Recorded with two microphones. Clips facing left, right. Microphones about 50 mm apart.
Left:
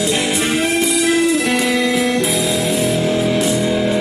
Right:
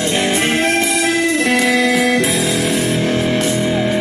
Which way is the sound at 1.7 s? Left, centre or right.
Right.